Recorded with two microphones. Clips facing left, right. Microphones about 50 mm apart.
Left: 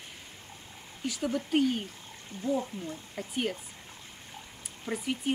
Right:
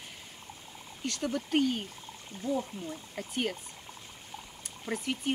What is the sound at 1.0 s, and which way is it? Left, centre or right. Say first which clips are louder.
Speech: left 2 dB; centre.